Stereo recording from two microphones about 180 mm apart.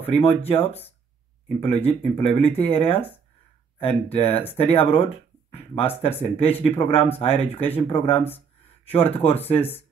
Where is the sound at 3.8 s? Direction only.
30° left (ahead or behind).